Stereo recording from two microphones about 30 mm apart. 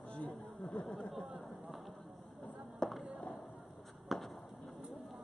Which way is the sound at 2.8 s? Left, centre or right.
Left.